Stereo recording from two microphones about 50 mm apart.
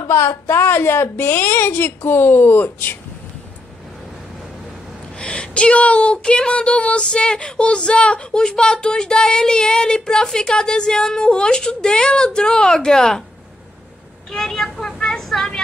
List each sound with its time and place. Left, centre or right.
0.3 s a woman's voice: left
5.2 s speech: centre
14.3 s vehicle: centre